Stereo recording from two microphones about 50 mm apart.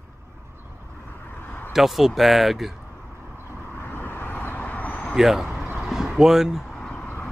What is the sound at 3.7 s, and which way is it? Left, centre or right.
Vehicle, left.